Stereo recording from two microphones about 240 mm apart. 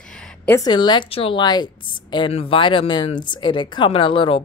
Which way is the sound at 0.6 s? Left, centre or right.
Centre.